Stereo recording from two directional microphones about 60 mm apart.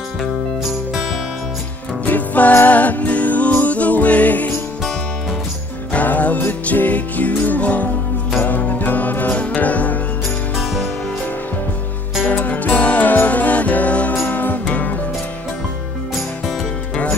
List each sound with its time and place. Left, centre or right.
2.0 s music: left
5.9 s music: left
12.3 s music: left